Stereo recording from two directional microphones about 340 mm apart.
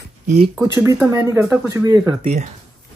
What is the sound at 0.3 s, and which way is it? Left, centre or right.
Speech, centre.